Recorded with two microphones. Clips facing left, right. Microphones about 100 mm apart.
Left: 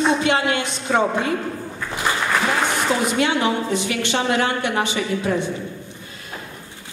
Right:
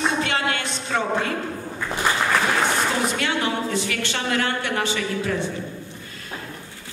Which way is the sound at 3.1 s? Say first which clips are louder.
Left 4 dB; 20° left (ahead or behind).